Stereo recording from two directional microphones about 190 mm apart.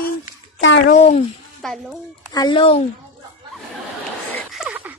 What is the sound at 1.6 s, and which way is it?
Speech, centre (ahead or behind).